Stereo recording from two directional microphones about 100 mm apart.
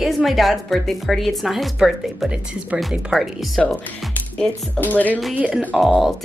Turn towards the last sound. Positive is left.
turn(degrees=0)  # may be behind; listen again after turning